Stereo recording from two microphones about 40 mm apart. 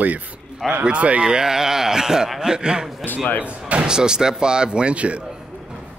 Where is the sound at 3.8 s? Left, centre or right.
Centre.